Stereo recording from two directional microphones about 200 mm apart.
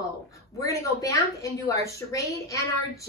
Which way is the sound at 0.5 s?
15° left (ahead or behind).